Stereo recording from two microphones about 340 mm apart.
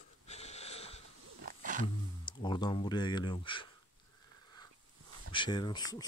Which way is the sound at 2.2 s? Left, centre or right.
Centre.